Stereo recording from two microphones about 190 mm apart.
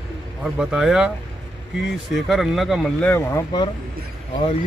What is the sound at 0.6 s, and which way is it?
Speech, 5° right (ahead or behind).